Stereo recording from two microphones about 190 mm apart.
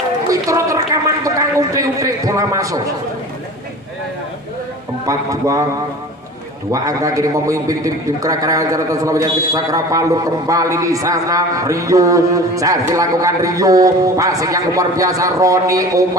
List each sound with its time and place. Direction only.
0.3 s a man's voice: 15° right (ahead or behind)
5.0 s a man's voice: 15° right (ahead or behind)
6.7 s a man's voice: 15° right (ahead or behind)